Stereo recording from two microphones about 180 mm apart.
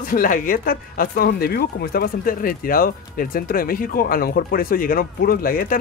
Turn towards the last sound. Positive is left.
turn(degrees=55)  # may be behind; listen again after turning